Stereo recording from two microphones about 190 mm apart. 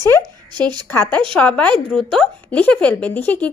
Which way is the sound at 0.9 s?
10° left (ahead or behind).